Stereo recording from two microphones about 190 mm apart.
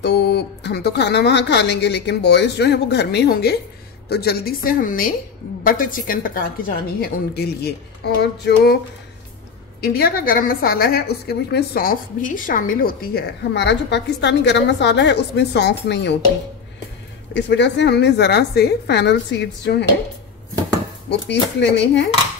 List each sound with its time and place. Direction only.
0.0 s a woman's voice: 60° left (ahead or behind)
7.0 s a woman's voice: 55° left (ahead or behind)
9.8 s a woman's voice: 55° left (ahead or behind)
17.3 s a woman's voice: 70° left (ahead or behind)
21.1 s a woman's voice: 65° left (ahead or behind)